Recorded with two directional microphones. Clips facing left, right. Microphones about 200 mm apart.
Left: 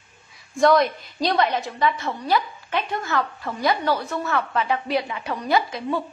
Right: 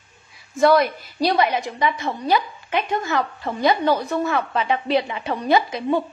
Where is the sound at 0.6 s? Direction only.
5° right (ahead or behind).